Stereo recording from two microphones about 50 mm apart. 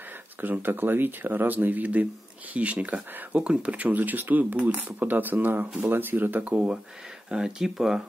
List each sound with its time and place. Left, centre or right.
0.4 s speech: right
6.5 s speech: centre